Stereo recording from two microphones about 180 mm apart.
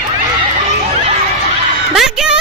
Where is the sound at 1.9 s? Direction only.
5° right (ahead or behind).